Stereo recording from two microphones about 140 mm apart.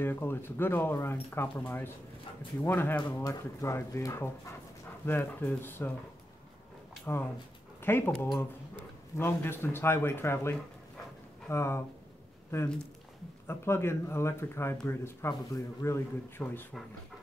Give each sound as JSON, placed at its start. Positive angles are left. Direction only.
{"t": 0.0, "sound": "speech", "side_deg": 15}
{"t": 7.8, "sound": "speech", "side_deg": 15}